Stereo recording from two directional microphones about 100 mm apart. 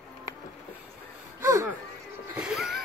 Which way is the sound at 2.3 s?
5° right (ahead or behind).